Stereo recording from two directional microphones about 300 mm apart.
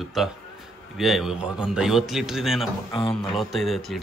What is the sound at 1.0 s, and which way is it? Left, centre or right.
Speech, centre.